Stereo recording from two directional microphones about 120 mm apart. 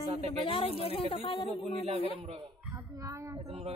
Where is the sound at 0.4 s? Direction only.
50° left (ahead or behind).